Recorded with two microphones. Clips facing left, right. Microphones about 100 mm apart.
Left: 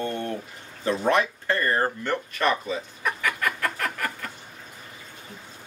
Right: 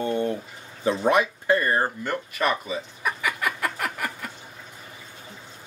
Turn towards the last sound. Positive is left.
turn(degrees=-10)  # may be behind; listen again after turning